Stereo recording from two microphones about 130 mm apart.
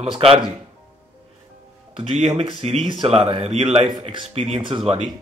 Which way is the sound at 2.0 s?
55° right (ahead or behind).